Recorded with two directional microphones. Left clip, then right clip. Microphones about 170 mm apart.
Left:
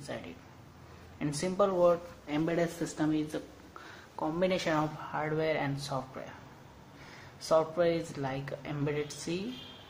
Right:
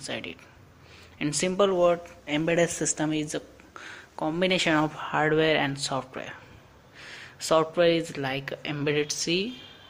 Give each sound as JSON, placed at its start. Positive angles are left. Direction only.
{"t": 1.1, "sound": "speech", "side_deg": -25}
{"t": 7.4, "sound": "speech", "side_deg": -25}